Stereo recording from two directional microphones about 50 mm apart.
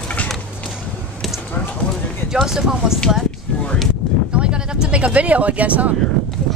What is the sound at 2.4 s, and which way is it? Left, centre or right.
Speech, centre.